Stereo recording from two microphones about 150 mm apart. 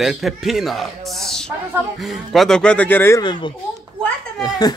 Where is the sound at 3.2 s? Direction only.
30° left (ahead or behind).